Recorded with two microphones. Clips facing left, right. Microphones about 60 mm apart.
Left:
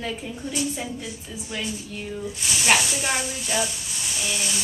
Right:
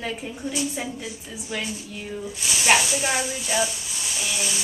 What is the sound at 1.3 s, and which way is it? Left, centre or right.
Speech, right.